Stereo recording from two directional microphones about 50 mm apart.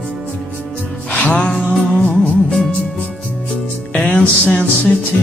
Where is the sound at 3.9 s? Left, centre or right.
Left.